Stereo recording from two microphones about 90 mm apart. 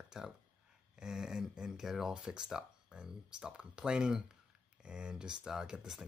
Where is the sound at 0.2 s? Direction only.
5° right (ahead or behind).